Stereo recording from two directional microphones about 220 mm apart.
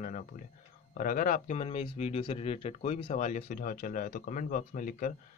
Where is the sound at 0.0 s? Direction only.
35° left (ahead or behind).